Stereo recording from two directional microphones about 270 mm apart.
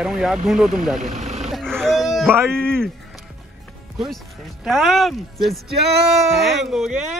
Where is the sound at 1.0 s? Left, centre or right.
Right.